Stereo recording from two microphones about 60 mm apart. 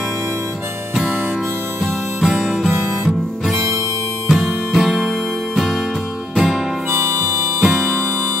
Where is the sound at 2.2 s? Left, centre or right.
Centre.